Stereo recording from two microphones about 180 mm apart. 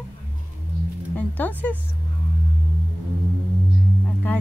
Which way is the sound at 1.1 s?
10° left (ahead or behind).